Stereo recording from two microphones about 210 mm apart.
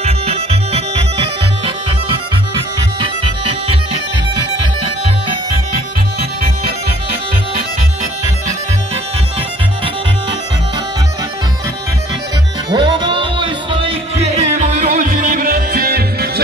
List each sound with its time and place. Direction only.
0.0 s music: 30° right (ahead or behind)
12.6 s music: 20° right (ahead or behind); by 16.3 s 45° right (ahead or behind)